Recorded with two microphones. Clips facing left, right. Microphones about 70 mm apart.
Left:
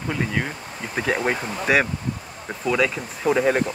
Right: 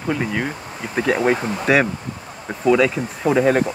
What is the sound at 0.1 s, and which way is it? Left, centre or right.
Speech, centre.